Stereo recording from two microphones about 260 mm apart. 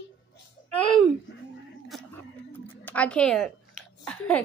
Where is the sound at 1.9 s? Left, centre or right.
Centre.